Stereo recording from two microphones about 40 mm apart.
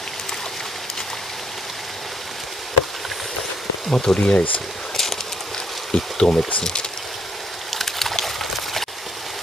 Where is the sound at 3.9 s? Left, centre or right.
Left.